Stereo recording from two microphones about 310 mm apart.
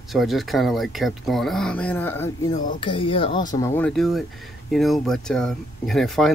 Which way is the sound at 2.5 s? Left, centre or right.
Left.